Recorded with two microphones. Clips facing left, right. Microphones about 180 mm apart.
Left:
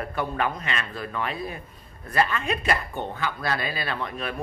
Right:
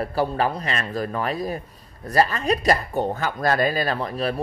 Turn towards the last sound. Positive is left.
turn(degrees=-35)  # may be behind; listen again after turning